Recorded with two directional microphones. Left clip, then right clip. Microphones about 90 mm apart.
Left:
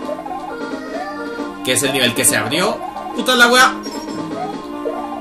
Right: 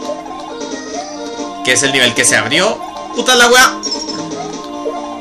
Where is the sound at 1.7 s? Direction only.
70° right (ahead or behind).